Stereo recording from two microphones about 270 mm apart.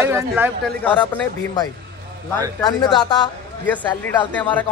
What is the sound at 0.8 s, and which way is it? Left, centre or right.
Speech, centre.